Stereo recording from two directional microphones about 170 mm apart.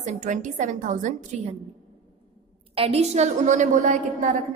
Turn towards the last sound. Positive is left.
turn(degrees=-45)  # may be behind; listen again after turning